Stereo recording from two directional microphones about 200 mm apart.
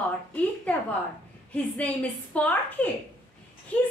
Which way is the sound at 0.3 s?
5° left (ahead or behind).